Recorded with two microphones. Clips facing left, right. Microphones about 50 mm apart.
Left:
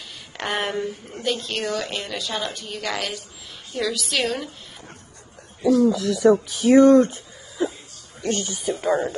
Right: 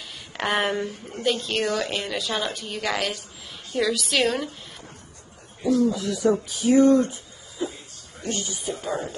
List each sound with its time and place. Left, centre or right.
0.4 s a woman's voice: centre
5.9 s speech: left